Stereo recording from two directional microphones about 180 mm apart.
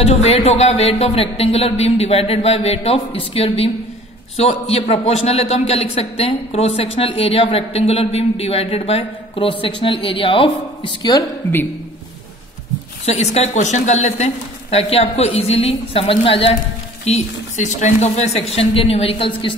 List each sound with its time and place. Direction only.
0.0 s a man's voice: 35° left (ahead or behind)
13.0 s a man's voice: 35° left (ahead or behind)